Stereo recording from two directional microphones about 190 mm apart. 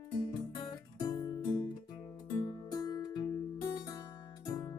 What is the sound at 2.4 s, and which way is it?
Music, 20° left (ahead or behind).